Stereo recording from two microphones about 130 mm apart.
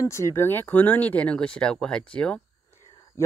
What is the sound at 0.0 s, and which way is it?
Speech, 20° left (ahead or behind).